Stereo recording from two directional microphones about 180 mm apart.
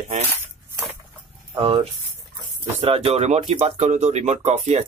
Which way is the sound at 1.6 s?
30° right (ahead or behind).